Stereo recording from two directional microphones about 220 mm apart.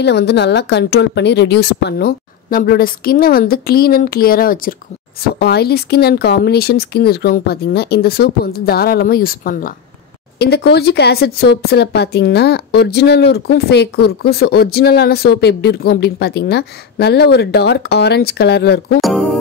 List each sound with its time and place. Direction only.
0.0 s speech: 50° left (ahead or behind)
18.9 s speech: centre (ahead or behind)